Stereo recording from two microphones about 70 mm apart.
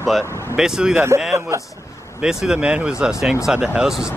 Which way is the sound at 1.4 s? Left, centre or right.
Right.